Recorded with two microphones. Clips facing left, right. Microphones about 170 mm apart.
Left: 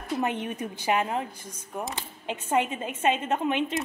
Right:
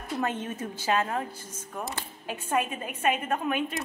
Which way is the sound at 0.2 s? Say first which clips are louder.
Even; 15° left (ahead or behind).